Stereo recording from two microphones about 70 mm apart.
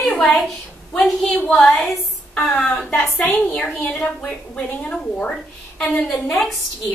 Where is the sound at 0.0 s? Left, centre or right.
Centre.